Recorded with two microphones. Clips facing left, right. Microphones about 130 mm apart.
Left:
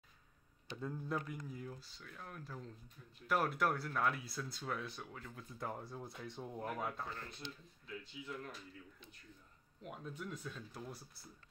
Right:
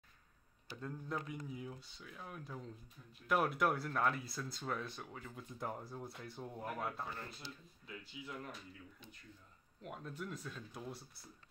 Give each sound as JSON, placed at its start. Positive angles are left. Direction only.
{"t": 0.7, "sound": "speech", "side_deg": 5}
{"t": 9.8, "sound": "speech", "side_deg": 0}